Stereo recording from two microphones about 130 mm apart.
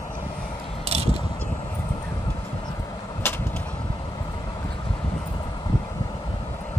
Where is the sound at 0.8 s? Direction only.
55° right (ahead or behind).